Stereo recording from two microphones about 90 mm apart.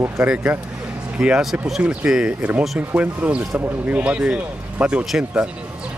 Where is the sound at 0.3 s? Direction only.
20° right (ahead or behind).